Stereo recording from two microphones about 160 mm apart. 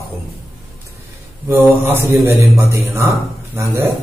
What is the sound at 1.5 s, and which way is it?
Mantra, 15° right (ahead or behind).